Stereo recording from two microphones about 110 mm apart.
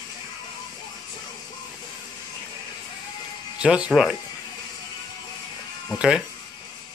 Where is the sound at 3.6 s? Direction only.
10° right (ahead or behind).